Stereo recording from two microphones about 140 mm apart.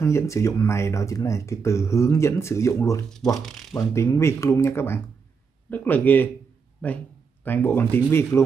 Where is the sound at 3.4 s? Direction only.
Centre (ahead or behind).